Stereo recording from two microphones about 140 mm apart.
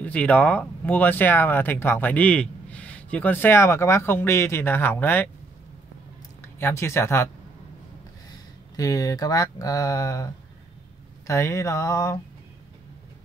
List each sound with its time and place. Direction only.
0.0 s speech: 10° left (ahead or behind)
6.4 s speech: 20° left (ahead or behind)
8.3 s speech: 25° left (ahead or behind)
11.2 s a sound: 20° left (ahead or behind)